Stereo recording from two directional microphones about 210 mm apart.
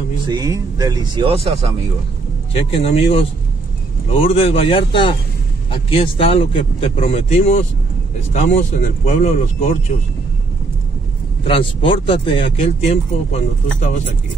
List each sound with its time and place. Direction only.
0.3 s speech: 15° right (ahead or behind)
2.5 s speech: 30° left (ahead or behind)
11.4 s speech: 25° left (ahead or behind)